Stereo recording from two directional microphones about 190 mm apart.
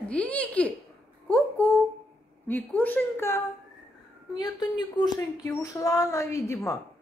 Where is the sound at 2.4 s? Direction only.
10° left (ahead or behind).